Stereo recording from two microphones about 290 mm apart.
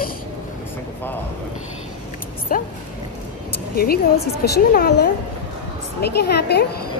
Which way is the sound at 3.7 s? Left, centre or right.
Left.